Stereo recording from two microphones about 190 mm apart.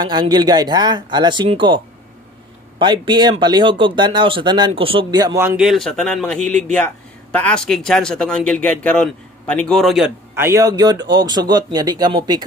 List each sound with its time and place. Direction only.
0.0 s speech: 25° right (ahead or behind)
2.8 s speech: 25° right (ahead or behind)
5.6 s speech: centre (ahead or behind); by 12.4 s 20° right (ahead or behind)